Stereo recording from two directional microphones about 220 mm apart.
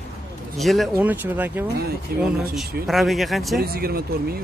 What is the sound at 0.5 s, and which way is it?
Speech, centre (ahead or behind).